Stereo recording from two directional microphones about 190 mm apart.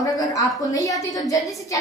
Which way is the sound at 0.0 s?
20° left (ahead or behind).